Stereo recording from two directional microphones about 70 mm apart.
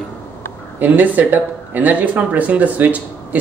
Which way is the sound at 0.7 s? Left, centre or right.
Right.